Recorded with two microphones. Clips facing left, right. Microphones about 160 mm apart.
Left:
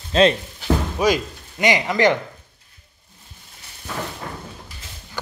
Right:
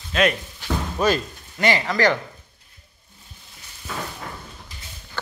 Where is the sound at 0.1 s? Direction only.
30° left (ahead or behind).